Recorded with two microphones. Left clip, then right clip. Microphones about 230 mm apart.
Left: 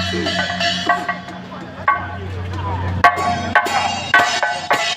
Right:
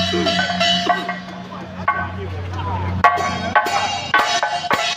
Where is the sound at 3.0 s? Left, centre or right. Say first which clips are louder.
Left 2 dB; left.